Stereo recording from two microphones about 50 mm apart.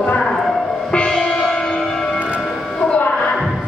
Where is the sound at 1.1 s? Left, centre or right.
Centre.